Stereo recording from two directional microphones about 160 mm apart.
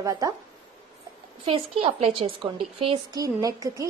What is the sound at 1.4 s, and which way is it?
A woman's voice, 35° right (ahead or behind).